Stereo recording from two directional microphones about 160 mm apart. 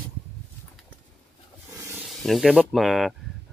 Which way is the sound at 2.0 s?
Centre (ahead or behind).